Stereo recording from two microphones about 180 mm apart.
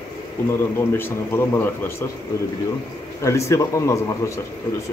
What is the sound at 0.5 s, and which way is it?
A man's voice, 15° left (ahead or behind).